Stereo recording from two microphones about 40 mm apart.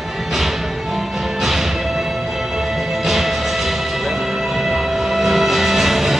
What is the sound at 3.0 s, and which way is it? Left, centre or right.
Music, centre.